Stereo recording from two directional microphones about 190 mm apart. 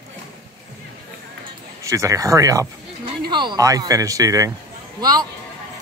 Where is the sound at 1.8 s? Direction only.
15° right (ahead or behind).